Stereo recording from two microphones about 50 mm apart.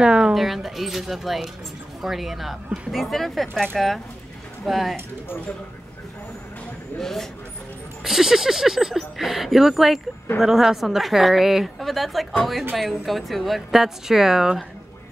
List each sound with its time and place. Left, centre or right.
0.0 s speech: centre
0.3 s a woman's voice: centre
7.0 s speech: centre
8.0 s a woman's voice: centre